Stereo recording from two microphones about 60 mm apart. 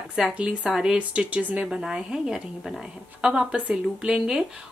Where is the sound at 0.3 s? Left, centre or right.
Centre.